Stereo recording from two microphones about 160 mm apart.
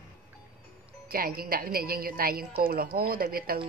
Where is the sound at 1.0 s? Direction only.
65° right (ahead or behind).